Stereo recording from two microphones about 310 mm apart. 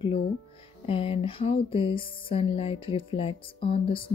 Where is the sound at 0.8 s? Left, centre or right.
Centre.